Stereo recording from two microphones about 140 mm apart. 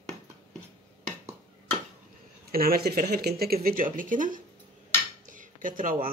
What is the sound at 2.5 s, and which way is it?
Speech, 90° right.